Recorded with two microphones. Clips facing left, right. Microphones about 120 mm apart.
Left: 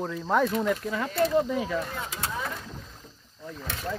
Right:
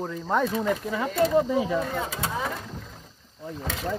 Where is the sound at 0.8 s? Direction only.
10° right (ahead or behind).